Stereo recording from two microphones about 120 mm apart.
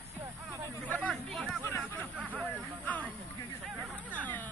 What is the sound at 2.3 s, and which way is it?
Hubbub, 10° left (ahead or behind).